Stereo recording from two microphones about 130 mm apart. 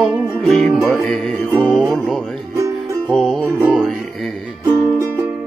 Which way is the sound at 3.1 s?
5° left (ahead or behind).